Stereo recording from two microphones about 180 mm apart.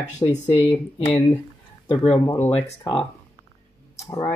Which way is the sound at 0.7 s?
35° left (ahead or behind).